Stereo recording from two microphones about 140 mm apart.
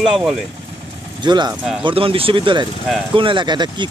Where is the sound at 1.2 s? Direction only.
30° right (ahead or behind).